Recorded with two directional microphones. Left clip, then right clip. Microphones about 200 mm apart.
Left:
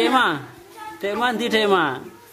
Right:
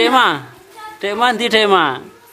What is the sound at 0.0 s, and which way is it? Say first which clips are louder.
Speech: right 6 dB; 15° right (ahead or behind).